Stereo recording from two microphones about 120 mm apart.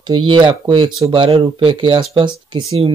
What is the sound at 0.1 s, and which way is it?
Speech, 40° right (ahead or behind).